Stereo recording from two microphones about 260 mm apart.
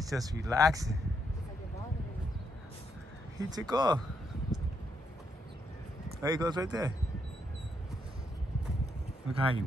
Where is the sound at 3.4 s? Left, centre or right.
Centre.